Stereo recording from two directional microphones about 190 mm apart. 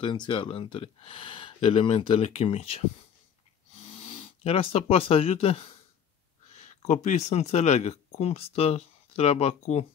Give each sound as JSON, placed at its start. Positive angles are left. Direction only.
{"t": 0.0, "sound": "speech", "side_deg": 25}
{"t": 3.8, "sound": "speech", "side_deg": 30}
{"t": 6.9, "sound": "speech", "side_deg": 40}